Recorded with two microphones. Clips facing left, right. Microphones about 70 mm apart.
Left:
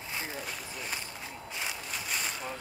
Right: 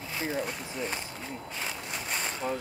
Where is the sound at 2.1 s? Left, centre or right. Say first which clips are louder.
Right 5 dB; centre.